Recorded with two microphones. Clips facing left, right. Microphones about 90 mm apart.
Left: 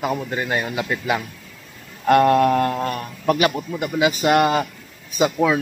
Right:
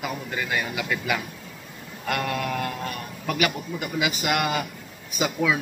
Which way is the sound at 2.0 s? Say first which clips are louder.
Left 13 dB; 40° left (ahead or behind).